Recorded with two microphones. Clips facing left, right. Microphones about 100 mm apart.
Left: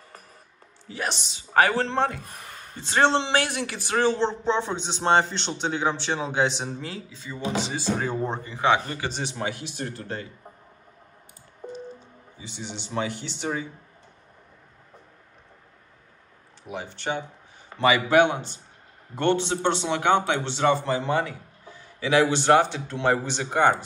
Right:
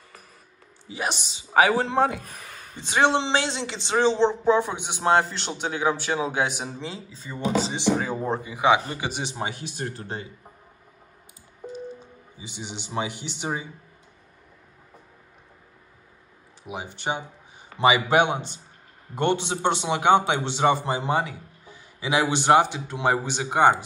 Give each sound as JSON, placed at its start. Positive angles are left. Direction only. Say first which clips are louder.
{"t": 0.8, "sound": "a man's voice", "louder": "right 1 dB", "side_deg": -10}
{"t": 7.0, "sound": "speech", "louder": "right 2 dB", "side_deg": -40}
{"t": 8.0, "sound": "a man's voice", "louder": "right 1 dB", "side_deg": -5}
{"t": 9.8, "sound": "speech", "louder": "right 1 dB", "side_deg": -45}
{"t": 11.6, "sound": "a sound", "louder": "right 1 dB", "side_deg": -5}
{"t": 12.4, "sound": "a man's voice", "louder": "even", "side_deg": -10}
{"t": 16.6, "sound": "a man's voice", "louder": "right 1 dB", "side_deg": -10}